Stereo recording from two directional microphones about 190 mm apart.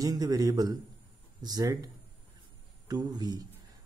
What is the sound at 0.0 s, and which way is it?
Speech, 20° right (ahead or behind).